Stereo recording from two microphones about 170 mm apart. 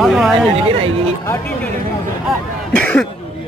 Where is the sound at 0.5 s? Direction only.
35° right (ahead or behind).